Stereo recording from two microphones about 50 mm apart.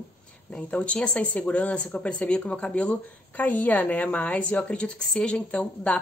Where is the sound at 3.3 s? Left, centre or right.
Left.